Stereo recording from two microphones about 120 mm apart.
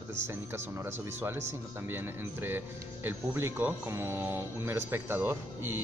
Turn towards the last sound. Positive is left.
turn(degrees=-20)  # may be behind; listen again after turning